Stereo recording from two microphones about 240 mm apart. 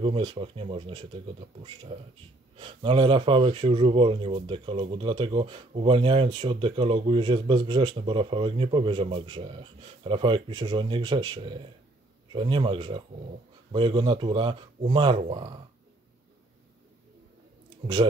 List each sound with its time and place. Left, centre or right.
0.0 s speech: right
2.5 s speech: right